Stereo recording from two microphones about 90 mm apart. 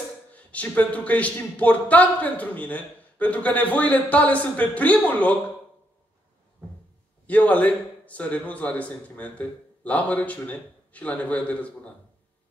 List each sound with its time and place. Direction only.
0.3 s a man's voice: 15° left (ahead or behind)
7.2 s a man's voice: 15° left (ahead or behind)